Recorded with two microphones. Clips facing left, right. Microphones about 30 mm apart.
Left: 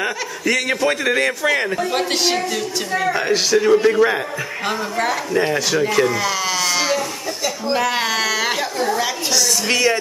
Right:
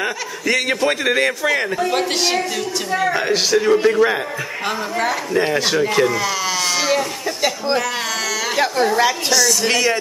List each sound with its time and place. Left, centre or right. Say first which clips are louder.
0.0 s a man's voice: even; centre
7.8 s speech: left 3 dB; centre
9.3 s a man's voice: right 2 dB; centre